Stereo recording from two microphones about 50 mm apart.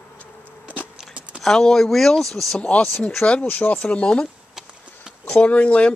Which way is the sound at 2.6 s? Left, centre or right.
Left.